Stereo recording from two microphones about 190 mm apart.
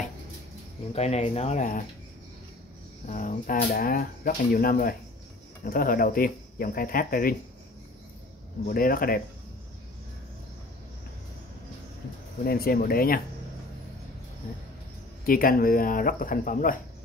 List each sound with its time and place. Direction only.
0.9 s speech: 35° left (ahead or behind)
3.1 s speech: 45° left (ahead or behind)
8.6 s speech: 50° left (ahead or behind)
12.4 s speech: 50° left (ahead or behind)
15.2 s speech: 50° left (ahead or behind)